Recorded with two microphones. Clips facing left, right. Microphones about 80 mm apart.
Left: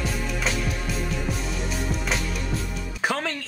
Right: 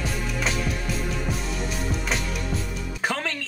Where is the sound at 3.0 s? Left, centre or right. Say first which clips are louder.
Left 1 dB; centre.